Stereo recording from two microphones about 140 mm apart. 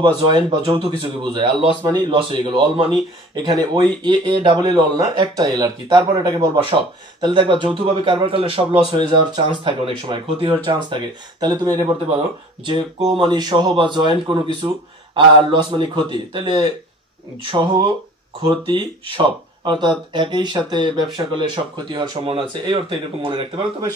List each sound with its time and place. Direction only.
0.3 s speech: 40° right (ahead or behind)
12.6 s speech: 35° right (ahead or behind)
19.1 s speech: 35° right (ahead or behind)